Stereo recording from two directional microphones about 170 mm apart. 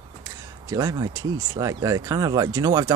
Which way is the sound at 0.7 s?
20° right (ahead or behind).